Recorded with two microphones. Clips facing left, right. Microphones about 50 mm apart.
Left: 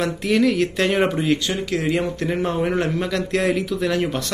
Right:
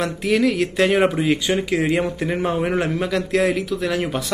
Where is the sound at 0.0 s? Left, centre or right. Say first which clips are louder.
Even; centre.